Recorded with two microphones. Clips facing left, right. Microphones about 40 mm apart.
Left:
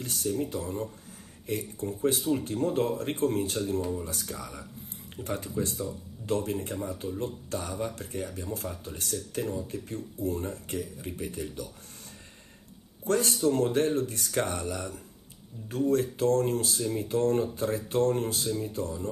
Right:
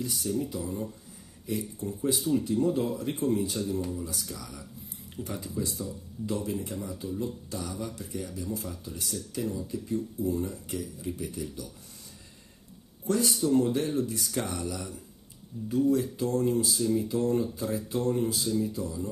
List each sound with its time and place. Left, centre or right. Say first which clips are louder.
0.0 s speech: even; left
13.0 s speech: left 2 dB; left
16.7 s speech: right 3 dB; left
17.0 s speech: left 1 dB; left